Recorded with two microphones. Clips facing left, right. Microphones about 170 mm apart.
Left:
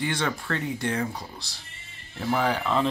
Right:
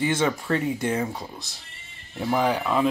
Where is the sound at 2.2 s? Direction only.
15° right (ahead or behind).